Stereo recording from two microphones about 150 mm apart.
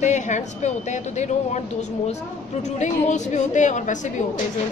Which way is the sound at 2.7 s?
50° left (ahead or behind).